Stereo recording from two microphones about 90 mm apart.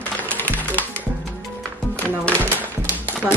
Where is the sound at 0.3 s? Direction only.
20° left (ahead or behind).